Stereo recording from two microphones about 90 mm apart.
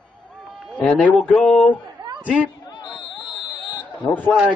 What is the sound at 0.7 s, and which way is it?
Speech, 10° left (ahead or behind).